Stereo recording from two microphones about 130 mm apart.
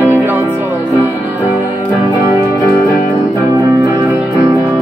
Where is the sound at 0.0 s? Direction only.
15° right (ahead or behind).